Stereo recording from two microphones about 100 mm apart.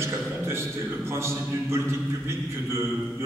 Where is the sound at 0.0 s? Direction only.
25° right (ahead or behind).